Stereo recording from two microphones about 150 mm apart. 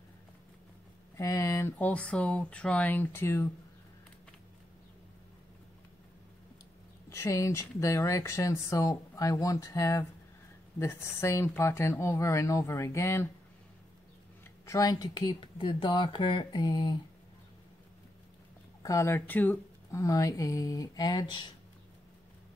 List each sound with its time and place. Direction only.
1.1 s speech: 20° left (ahead or behind)
7.1 s speech: 20° left (ahead or behind)
14.7 s speech: 25° left (ahead or behind)
18.8 s speech: 20° left (ahead or behind)
20.0 s speech: 20° left (ahead or behind)